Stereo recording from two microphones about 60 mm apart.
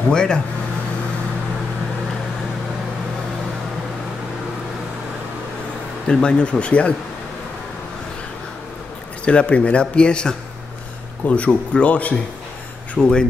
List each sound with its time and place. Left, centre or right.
0.1 s speech: centre
6.0 s speech: centre
9.2 s speech: centre